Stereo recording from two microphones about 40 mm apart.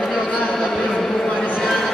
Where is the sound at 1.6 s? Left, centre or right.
Centre.